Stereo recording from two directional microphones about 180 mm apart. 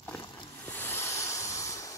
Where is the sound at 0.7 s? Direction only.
10° left (ahead or behind).